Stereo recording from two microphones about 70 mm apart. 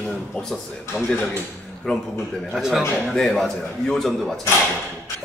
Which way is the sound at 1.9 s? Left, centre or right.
Centre.